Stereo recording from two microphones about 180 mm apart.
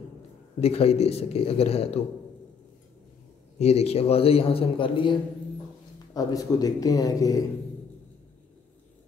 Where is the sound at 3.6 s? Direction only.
35° left (ahead or behind); by 7.4 s 20° left (ahead or behind).